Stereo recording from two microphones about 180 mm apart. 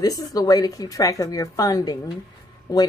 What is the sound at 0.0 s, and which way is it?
A woman's voice, 20° left (ahead or behind).